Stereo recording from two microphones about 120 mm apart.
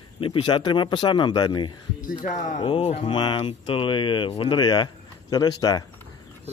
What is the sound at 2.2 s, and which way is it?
Speech, 90° left.